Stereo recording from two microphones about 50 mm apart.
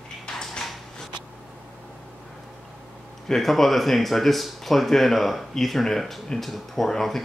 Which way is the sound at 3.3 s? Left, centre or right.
Centre.